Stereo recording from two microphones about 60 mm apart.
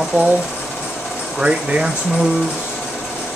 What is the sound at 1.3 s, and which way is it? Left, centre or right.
Speech, centre.